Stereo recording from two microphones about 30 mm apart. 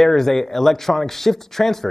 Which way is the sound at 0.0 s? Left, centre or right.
Centre.